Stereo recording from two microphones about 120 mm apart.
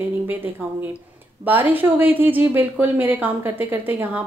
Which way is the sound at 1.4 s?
15° right (ahead or behind).